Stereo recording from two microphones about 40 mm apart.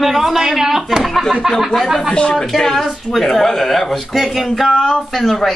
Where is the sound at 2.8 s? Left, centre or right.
Centre.